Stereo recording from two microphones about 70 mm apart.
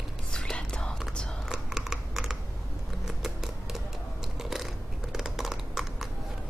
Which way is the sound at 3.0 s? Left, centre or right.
Centre.